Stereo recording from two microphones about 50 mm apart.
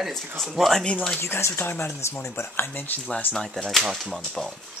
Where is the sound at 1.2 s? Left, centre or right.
Left.